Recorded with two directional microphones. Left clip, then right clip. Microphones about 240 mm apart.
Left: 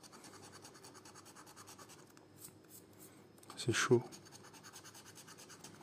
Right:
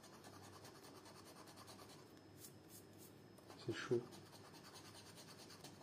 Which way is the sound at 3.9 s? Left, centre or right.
Left.